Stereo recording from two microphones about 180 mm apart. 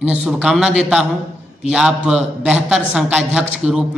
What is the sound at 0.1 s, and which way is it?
A man's voice, 5° right (ahead or behind).